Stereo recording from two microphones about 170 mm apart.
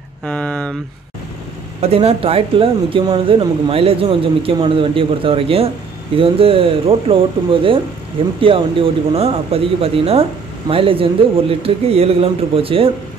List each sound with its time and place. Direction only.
0.2 s speech: 5° left (ahead or behind)
1.8 s speech: 35° right (ahead or behind)